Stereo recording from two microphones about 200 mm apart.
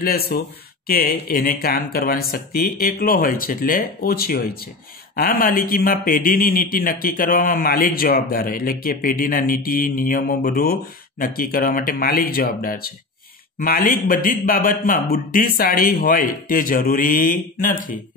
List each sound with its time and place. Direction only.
0.0 s speech: 50° left (ahead or behind)